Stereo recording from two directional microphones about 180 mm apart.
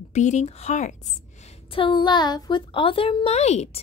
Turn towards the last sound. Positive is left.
turn(degrees=35)  # may be behind; listen again after turning